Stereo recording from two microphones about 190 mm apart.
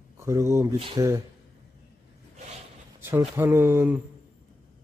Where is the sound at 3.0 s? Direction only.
10° right (ahead or behind).